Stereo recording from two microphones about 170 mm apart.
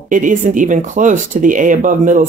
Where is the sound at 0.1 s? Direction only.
50° right (ahead or behind).